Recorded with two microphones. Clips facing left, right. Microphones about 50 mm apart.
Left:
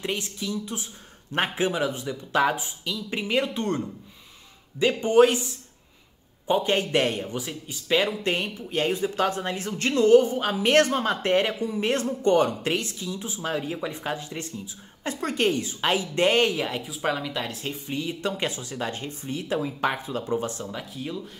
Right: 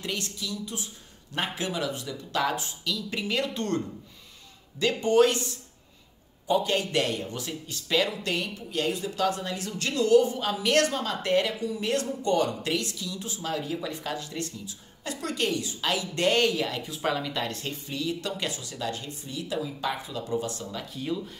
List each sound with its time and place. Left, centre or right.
0.0 s speech: left
6.4 s speech: left
7.2 s speech: centre
8.0 s a man's voice: left
16.8 s speech: centre
17.8 s a man's voice: left
20.9 s speech: centre